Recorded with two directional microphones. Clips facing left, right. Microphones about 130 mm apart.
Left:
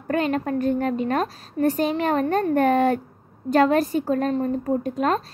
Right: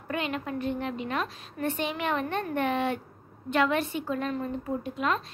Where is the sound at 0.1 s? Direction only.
40° left (ahead or behind).